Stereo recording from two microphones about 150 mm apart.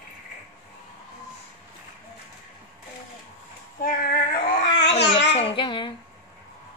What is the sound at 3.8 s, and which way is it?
Female singing, 65° left (ahead or behind).